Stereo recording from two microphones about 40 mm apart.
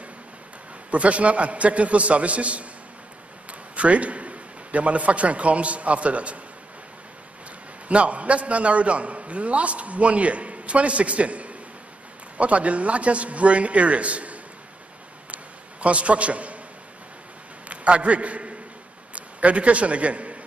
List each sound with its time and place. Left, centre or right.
0.9 s a man's voice: right
3.7 s a man's voice: right
7.9 s a man's voice: right
15.3 s a sound: right
17.6 s a man's voice: right